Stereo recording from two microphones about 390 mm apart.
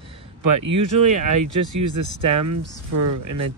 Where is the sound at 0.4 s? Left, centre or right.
Right.